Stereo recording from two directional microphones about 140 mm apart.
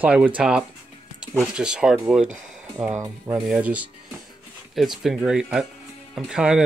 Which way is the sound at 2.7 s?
15° right (ahead or behind).